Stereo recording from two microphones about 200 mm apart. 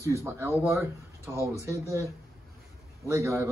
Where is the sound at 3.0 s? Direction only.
15° right (ahead or behind).